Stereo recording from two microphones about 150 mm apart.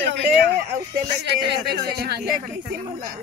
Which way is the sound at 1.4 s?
90° right.